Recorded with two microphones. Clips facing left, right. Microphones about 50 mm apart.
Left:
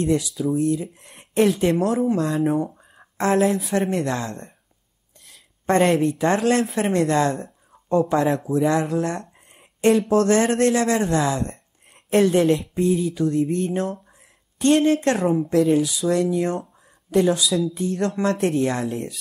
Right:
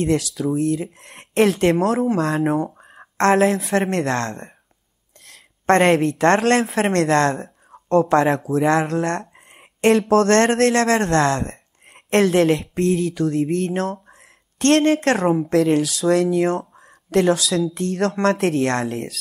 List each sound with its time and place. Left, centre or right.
0.0 s a woman's voice: right
2.7 s a sound: right
3.2 s a woman's voice: right
3.9 s speech: right
4.3 s speech: centre
5.2 s a sound: right
5.9 s speech: right
9.5 s a sound: right
10.2 s speech: right
14.6 s speech: right
16.7 s a sound: right
17.3 s speech: right